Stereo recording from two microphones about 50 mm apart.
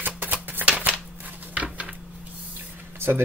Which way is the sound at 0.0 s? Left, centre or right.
Right.